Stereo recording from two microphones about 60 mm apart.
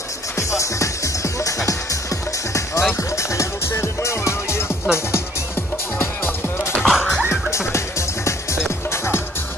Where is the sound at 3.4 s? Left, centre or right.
Left.